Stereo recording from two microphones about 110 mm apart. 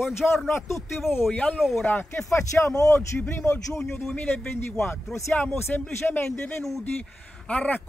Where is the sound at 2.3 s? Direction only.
25° left (ahead or behind).